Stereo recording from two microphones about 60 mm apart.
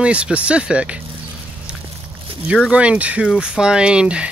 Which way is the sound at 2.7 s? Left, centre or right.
Centre.